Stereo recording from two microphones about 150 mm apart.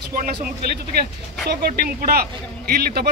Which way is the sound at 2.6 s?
90° right.